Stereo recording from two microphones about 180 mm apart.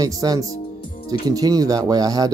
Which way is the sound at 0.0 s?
20° right (ahead or behind).